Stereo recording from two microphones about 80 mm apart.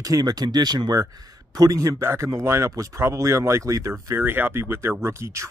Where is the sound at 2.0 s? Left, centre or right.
Right.